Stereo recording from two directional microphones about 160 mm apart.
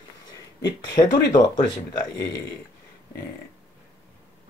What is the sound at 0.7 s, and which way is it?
Speech, 25° left (ahead or behind).